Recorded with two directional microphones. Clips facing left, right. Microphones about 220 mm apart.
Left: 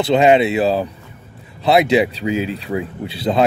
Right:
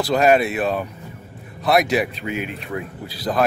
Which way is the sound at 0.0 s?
25° left (ahead or behind).